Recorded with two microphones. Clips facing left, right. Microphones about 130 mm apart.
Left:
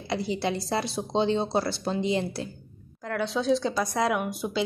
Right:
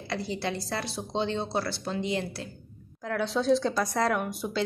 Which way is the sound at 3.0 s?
Centre (ahead or behind).